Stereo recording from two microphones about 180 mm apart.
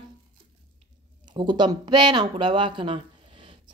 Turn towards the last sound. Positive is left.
turn(degrees=-25)  # may be behind; listen again after turning